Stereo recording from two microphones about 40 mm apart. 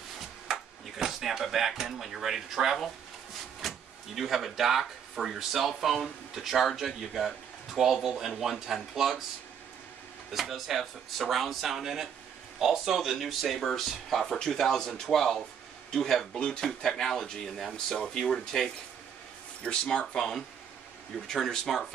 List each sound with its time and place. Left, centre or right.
0.5 s speech: centre
7.2 s speech: centre
10.3 s speech: centre
16.3 s speech: left
16.6 s speech: centre
20.2 s speech: centre